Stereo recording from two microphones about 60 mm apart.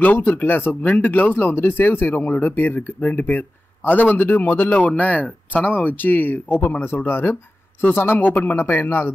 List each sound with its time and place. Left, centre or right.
0.0 s speech: left